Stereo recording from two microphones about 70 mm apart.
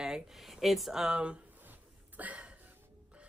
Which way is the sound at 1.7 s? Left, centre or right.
Right.